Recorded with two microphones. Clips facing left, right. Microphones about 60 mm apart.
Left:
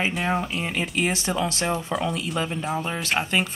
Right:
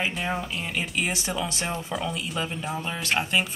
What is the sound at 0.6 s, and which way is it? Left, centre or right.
Speech, left.